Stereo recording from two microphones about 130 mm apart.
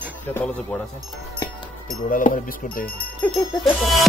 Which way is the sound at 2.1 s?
90° left.